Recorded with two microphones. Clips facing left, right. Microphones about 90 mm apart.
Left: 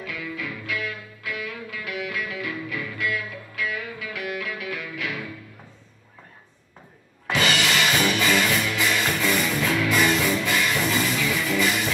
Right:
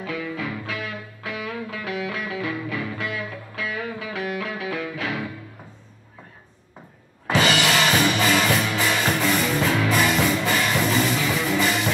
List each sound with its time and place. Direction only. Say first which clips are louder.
0.0 s music: right 4 dB; 40° right (ahead or behind)
7.2 s music: right 3 dB; 35° right (ahead or behind)